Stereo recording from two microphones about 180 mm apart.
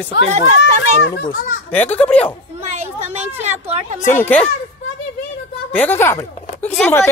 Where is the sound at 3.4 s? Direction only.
35° right (ahead or behind).